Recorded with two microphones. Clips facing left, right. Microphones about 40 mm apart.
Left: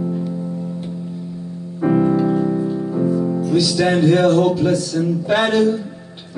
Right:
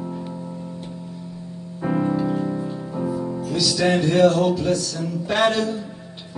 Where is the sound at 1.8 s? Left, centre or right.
Centre.